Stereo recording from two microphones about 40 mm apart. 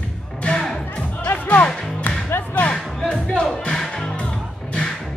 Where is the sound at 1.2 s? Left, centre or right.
Left.